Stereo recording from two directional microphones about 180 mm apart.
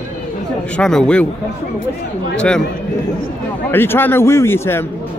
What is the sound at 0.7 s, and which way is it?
Speech, 5° left (ahead or behind).